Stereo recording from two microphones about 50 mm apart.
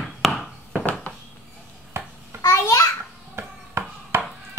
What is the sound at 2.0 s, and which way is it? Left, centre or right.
Babbling, right.